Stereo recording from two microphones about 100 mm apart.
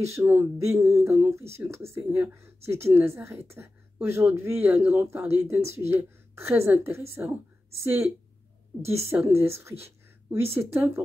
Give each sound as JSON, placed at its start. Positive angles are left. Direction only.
{"t": 0.0, "sound": "speech", "side_deg": -25}
{"t": 8.8, "sound": "speech", "side_deg": -25}